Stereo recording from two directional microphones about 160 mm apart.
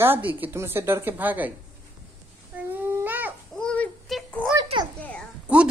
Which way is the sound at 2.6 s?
10° right (ahead or behind).